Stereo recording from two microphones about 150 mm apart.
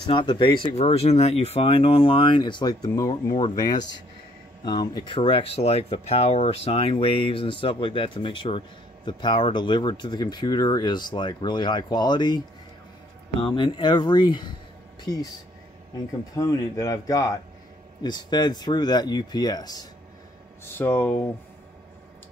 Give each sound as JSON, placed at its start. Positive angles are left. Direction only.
{"t": 0.1, "sound": "speech", "side_deg": 30}
{"t": 0.7, "sound": "speech", "side_deg": 45}
{"t": 13.4, "sound": "speech", "side_deg": 35}
{"t": 16.3, "sound": "speech", "side_deg": 25}
{"t": 20.6, "sound": "speech", "side_deg": 15}